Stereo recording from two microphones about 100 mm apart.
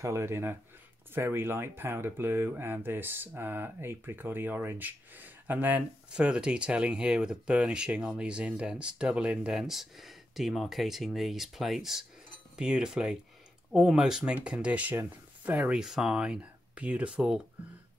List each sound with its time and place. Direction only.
0.0 s speech: 25° right (ahead or behind); by 17.4 s 10° right (ahead or behind)